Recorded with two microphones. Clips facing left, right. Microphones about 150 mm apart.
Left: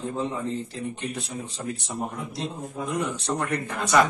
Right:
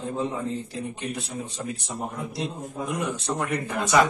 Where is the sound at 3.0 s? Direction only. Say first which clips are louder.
Left 1 dB; 10° right (ahead or behind).